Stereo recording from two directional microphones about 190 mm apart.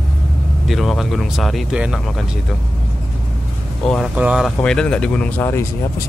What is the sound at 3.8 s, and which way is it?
Speech, 5° left (ahead or behind).